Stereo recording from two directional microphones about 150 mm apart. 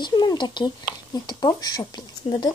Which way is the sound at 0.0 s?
30° left (ahead or behind).